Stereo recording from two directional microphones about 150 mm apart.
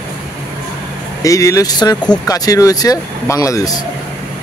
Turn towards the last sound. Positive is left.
turn(degrees=25)  # may be behind; listen again after turning